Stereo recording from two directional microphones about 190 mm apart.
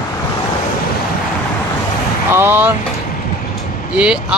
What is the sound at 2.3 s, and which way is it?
Speech, 10° right (ahead or behind).